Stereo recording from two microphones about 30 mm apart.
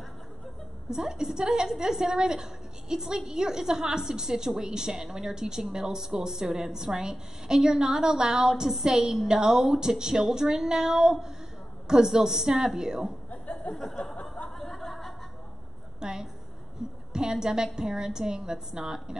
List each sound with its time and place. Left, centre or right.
0.8 s a woman's voice: centre
10.4 s child singing: centre
11.9 s a woman's voice: right
13.3 s a sound: left
14.6 s chuckle: centre
16.0 s a sound: right
17.1 s a woman's voice: right